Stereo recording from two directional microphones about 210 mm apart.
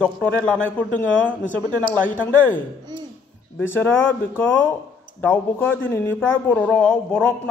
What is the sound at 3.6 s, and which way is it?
A man's voice, 10° left (ahead or behind).